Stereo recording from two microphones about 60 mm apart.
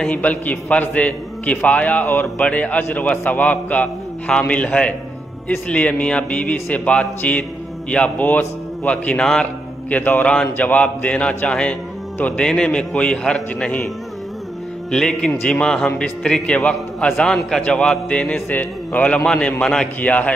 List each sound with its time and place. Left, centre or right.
0.1 s a man's voice: left
9.2 s a man's voice: centre
9.8 s a man's voice: left
14.9 s a man's voice: centre
18.5 s a man's voice: left; by 19.9 s centre
20.0 s a man's voice: left